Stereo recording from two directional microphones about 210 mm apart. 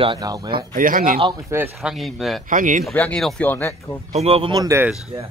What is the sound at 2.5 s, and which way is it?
Speech, 40° right (ahead or behind).